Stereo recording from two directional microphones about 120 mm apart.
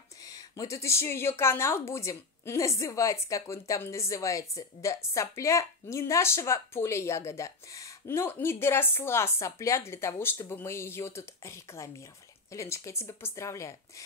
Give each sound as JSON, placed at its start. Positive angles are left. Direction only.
{"t": 0.2, "sound": "speech", "side_deg": 30}